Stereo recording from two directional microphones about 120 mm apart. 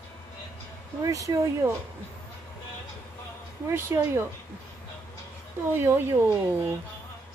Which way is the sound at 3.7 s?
20° right (ahead or behind).